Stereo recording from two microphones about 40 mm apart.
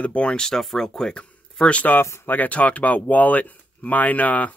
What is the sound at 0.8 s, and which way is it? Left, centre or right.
Speech, centre.